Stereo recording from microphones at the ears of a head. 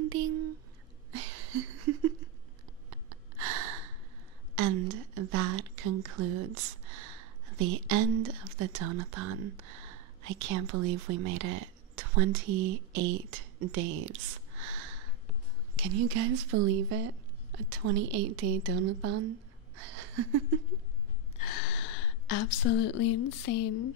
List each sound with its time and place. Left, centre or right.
0.0 s a sound: right
2.9 s gasp: right
4.6 s speech: right
21.4 s speech: left